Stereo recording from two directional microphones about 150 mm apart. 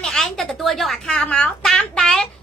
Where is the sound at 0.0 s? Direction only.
Centre (ahead or behind).